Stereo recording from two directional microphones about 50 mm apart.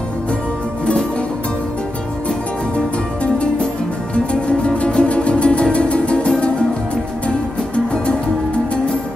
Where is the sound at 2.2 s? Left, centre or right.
Left.